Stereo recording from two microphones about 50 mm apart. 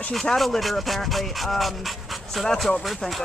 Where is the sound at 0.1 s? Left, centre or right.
Centre.